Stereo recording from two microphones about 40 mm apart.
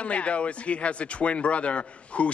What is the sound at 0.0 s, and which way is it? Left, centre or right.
Speech, left.